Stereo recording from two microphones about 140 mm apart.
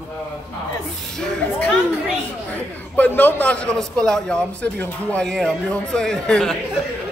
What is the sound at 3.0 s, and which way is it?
A man's voice, 10° left (ahead or behind).